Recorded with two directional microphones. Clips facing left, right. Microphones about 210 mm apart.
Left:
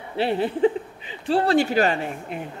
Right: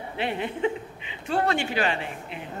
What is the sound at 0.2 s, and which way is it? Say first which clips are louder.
Speech: left 7 dB; 35° left (ahead or behind).